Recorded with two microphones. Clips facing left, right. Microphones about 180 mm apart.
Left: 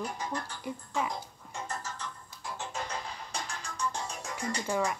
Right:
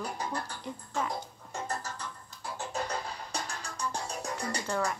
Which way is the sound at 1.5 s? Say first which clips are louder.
Right 2 dB; 35° right (ahead or behind).